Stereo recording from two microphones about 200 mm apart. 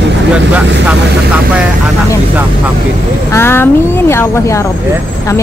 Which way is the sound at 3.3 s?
10° left (ahead or behind).